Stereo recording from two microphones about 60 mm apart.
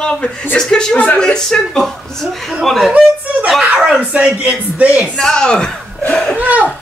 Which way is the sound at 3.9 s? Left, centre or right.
Right.